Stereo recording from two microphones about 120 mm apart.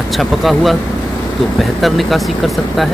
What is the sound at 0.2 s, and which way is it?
Speech, centre (ahead or behind).